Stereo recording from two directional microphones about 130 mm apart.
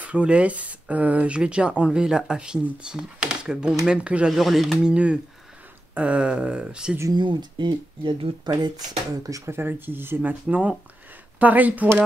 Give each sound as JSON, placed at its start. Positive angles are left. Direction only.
{"t": 0.0, "sound": "speech", "side_deg": -10}
{"t": 7.0, "sound": "speech", "side_deg": -30}
{"t": 9.3, "sound": "speech", "side_deg": -20}